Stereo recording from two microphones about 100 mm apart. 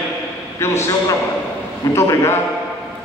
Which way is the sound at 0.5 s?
25° left (ahead or behind).